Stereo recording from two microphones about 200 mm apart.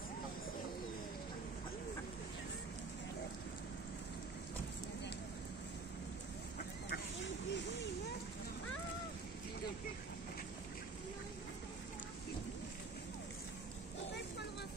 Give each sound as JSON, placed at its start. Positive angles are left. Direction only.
{"t": 6.9, "sound": "duck", "side_deg": 60}